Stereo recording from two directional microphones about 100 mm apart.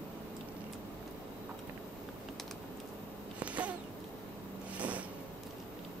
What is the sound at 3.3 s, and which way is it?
Insect, 15° right (ahead or behind).